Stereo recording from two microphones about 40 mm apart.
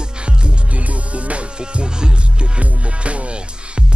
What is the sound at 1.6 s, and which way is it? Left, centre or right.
Music, right.